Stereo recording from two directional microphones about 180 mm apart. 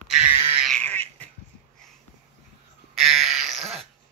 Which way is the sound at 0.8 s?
10° left (ahead or behind).